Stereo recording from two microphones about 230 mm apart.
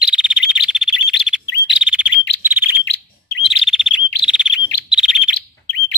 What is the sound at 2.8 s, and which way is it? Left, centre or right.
Bird, left.